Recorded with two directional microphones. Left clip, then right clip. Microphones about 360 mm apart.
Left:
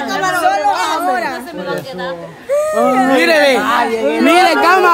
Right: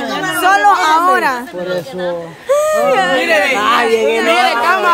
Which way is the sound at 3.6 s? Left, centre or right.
Right.